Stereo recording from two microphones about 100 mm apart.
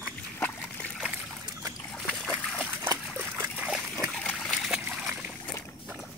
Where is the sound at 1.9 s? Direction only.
5° left (ahead or behind).